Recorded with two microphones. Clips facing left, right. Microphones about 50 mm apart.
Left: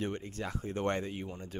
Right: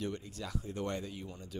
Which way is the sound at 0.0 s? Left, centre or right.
Left.